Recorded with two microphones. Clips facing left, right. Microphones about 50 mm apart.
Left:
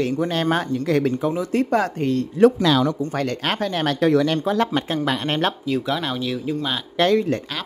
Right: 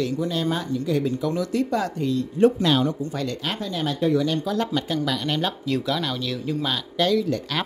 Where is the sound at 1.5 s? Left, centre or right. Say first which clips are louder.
Left 4 dB; left.